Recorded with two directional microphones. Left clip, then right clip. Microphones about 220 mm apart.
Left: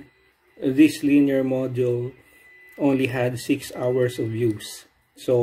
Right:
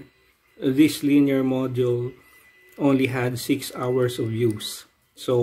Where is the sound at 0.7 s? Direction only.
15° right (ahead or behind).